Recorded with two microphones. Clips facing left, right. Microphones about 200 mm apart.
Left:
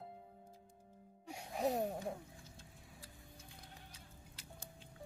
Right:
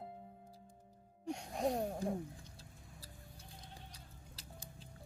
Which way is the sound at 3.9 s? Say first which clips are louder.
Right 1 dB; 35° right (ahead or behind).